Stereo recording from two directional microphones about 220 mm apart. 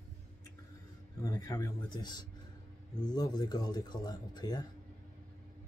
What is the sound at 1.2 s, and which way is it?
Speech, 15° left (ahead or behind).